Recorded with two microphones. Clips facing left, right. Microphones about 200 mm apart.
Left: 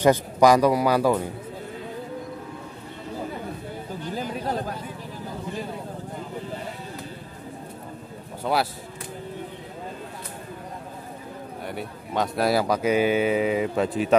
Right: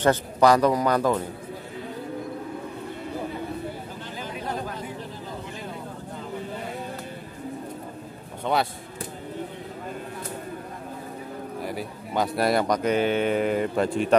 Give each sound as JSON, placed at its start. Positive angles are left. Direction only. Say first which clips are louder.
{"t": 0.0, "sound": "a man's voice", "louder": "left 2 dB", "side_deg": 10}
{"t": 4.1, "sound": "a sound", "louder": "left 4 dB", "side_deg": 40}
{"t": 11.6, "sound": "speech", "louder": "right 1 dB", "side_deg": 0}